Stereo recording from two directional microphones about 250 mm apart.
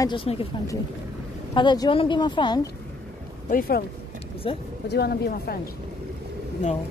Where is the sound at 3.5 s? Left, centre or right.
Left.